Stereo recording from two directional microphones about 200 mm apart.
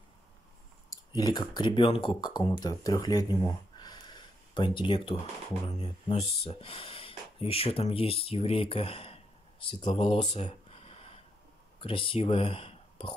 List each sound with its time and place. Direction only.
0.8 s speech: 20° left (ahead or behind)
9.9 s a sound: 30° left (ahead or behind)
11.8 s speech: 25° left (ahead or behind)